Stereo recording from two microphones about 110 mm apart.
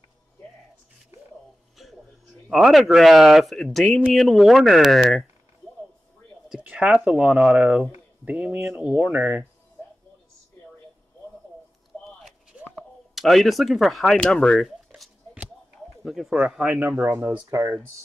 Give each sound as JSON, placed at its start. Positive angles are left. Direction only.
{"t": 2.5, "sound": "speech", "side_deg": -5}
{"t": 6.5, "sound": "speech", "side_deg": -10}
{"t": 12.2, "sound": "a sound", "side_deg": -5}
{"t": 13.1, "sound": "speech", "side_deg": 0}
{"t": 16.0, "sound": "speech", "side_deg": 0}
{"t": 17.5, "sound": "speech", "side_deg": -30}